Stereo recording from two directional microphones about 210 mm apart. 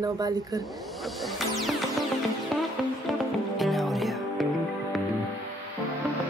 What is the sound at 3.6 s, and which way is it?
Music, centre (ahead or behind).